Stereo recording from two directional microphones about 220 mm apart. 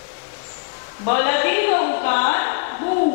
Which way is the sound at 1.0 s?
15° left (ahead or behind).